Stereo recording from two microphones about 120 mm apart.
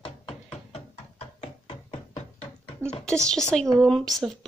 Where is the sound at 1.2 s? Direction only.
65° left (ahead or behind).